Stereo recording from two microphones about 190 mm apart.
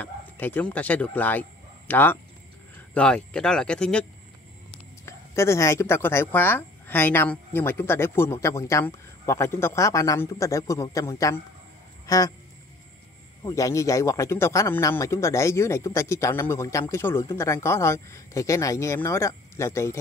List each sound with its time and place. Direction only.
0.0 s speech: 10° left (ahead or behind)
5.0 s speech: 15° left (ahead or behind)
12.1 s a sound: 20° left (ahead or behind)
13.4 s speech: 15° left (ahead or behind)